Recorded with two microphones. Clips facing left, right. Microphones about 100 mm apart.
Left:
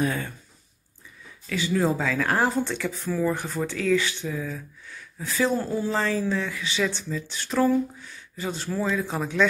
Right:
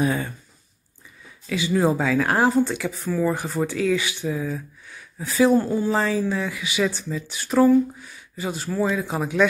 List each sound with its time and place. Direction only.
0.0 s speech: 15° right (ahead or behind)
1.5 s speech: 15° right (ahead or behind)